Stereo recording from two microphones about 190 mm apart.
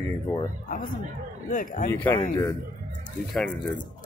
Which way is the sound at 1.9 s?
10° left (ahead or behind).